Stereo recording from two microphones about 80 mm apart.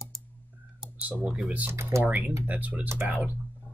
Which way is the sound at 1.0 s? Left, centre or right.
Centre.